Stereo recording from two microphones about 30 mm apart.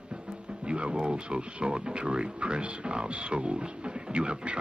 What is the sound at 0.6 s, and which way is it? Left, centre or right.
Speech, right.